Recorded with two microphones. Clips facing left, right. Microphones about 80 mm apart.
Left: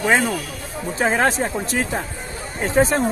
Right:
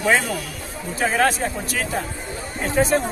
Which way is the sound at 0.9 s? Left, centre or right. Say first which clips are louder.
Left 1 dB; left.